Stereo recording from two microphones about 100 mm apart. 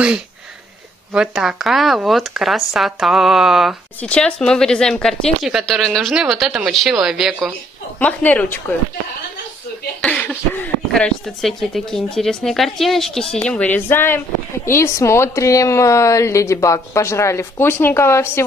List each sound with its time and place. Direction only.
1.1 s speech: 5° right (ahead or behind)
4.0 s speech: 10° left (ahead or behind)
8.0 s a woman's voice: 15° left (ahead or behind)
10.0 s a sound: 10° left (ahead or behind)
10.9 s speech: 5° left (ahead or behind); by 18.4 s 25° left (ahead or behind)